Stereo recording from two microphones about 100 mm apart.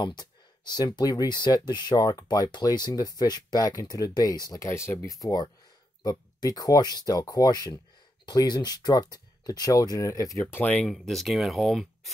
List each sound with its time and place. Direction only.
0.0 s speech: 45° left (ahead or behind); by 10.4 s 30° left (ahead or behind)
10.4 s speech: 15° left (ahead or behind); by 12.1 s centre (ahead or behind)